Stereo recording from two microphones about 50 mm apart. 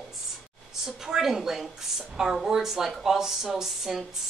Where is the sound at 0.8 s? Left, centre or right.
Centre.